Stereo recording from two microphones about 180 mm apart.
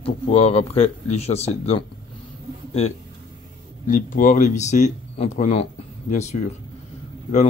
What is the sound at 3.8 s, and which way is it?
Speech, 45° left (ahead or behind).